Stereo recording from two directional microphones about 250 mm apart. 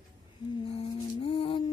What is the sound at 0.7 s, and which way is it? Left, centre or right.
Mantra, left.